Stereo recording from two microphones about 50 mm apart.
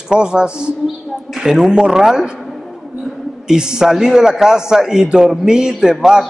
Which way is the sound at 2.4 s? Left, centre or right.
Centre.